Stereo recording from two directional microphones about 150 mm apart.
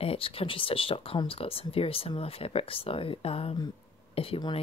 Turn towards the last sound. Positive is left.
turn(degrees=40)  # may be behind; listen again after turning